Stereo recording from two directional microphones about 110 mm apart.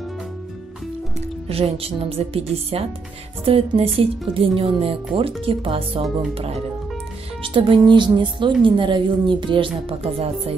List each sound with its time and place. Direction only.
1.5 s speech: 60° right (ahead or behind)
7.4 s speech: 50° right (ahead or behind)